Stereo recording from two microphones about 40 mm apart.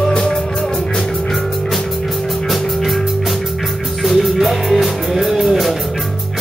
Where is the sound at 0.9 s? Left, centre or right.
Centre.